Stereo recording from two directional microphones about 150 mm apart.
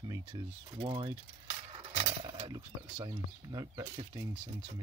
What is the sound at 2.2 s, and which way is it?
Speech, 30° right (ahead or behind).